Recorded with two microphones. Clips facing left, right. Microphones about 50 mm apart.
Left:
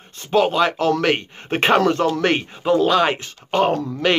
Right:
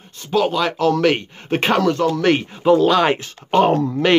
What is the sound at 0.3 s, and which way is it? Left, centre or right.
Speech, centre.